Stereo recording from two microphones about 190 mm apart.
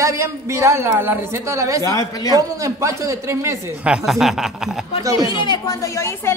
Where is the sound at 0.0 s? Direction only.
15° right (ahead or behind).